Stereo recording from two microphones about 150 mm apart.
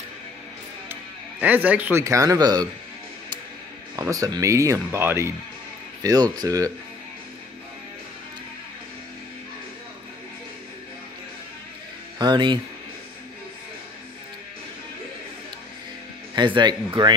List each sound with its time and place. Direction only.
1.4 s speech: 10° right (ahead or behind); by 2.7 s 25° right (ahead or behind)
4.1 s speech: 20° right (ahead or behind)
6.0 s speech: 25° right (ahead or behind)
12.2 s speech: 30° right (ahead or behind)
16.3 s speech: 30° right (ahead or behind)